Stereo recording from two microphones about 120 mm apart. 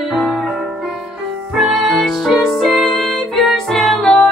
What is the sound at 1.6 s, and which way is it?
Music, 5° right (ahead or behind).